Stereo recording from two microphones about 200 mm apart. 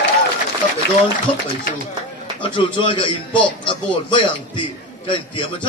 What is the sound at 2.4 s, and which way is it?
A man's voice, 25° left (ahead or behind).